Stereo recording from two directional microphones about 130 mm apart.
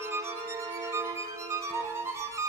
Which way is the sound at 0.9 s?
20° right (ahead or behind).